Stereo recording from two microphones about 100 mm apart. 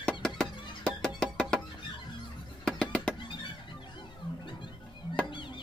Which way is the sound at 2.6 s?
5° left (ahead or behind).